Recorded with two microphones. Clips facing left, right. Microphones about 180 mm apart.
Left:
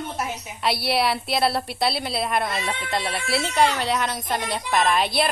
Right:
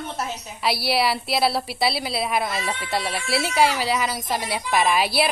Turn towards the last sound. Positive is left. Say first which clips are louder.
# right 1 dB
turn(degrees=-5)  # may be behind; listen again after turning